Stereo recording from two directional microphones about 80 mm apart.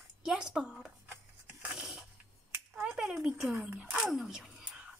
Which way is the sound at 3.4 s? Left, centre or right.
Right.